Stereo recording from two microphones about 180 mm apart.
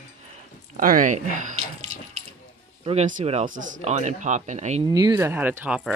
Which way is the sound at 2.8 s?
35° right (ahead or behind).